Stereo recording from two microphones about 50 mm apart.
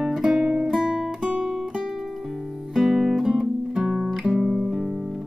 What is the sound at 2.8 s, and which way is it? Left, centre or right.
Music, centre.